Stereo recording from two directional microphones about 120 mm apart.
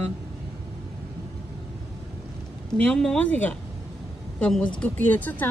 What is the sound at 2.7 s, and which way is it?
Speech, 5° left (ahead or behind).